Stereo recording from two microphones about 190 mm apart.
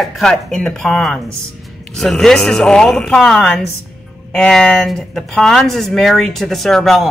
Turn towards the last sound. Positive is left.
turn(degrees=0)  # may be behind; listen again after turning